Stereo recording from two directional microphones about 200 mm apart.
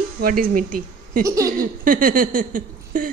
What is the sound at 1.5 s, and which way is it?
Speech, 45° right (ahead or behind).